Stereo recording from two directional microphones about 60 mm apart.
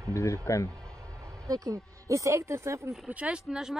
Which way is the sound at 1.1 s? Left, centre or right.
Right.